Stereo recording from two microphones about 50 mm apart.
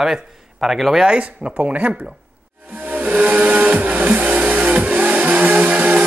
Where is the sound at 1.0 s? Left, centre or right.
Right.